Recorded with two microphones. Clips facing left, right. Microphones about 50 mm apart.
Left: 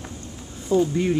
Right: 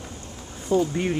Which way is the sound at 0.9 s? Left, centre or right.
Centre.